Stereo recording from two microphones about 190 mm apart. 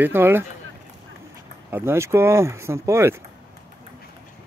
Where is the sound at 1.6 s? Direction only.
10° right (ahead or behind).